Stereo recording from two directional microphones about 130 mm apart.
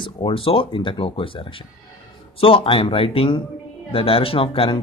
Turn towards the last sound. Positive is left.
turn(degrees=45)  # may be behind; listen again after turning